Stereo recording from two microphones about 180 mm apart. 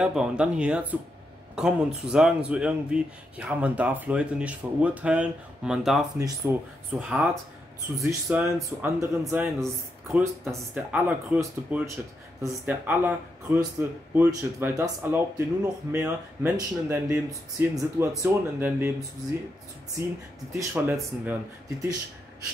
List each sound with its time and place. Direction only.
0.0 s speech: 5° right (ahead or behind)
6.1 s speech: 15° right (ahead or behind)
7.0 s speech: 5° right (ahead or behind)
20.5 s speech: 15° right (ahead or behind)